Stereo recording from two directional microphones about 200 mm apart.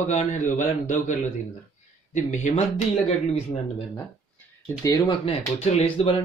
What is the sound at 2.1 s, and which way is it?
Speech, 35° left (ahead or behind).